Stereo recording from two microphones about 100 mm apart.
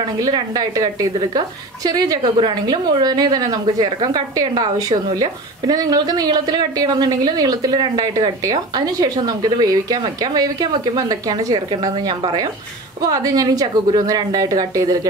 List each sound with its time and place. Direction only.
0.2 s a woman's voice: 40° right (ahead or behind)
1.9 s a woman's voice: 40° right (ahead or behind)
2.3 s a woman's voice: 50° right (ahead or behind)
13.0 s a woman's voice: 40° right (ahead or behind)